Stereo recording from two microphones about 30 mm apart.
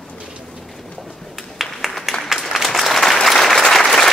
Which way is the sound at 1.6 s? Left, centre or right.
Centre.